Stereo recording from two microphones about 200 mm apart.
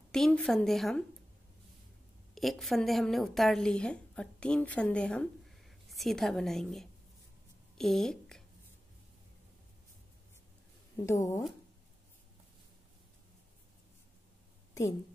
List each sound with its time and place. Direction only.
0.1 s a woman's voice: 5° left (ahead or behind)
2.3 s a woman's voice: centre (ahead or behind)
11.1 s speech: 15° left (ahead or behind)
14.7 s a sound: 15° left (ahead or behind)